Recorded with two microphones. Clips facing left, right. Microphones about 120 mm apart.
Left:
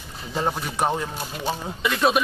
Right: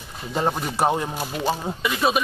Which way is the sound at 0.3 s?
20° right (ahead or behind).